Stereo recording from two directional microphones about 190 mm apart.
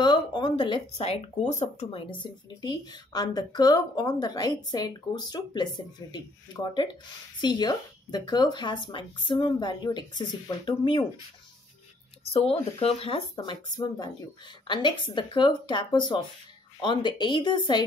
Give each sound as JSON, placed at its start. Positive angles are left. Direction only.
{"t": 0.0, "sound": "speech", "side_deg": 25}
{"t": 12.3, "sound": "speech", "side_deg": 30}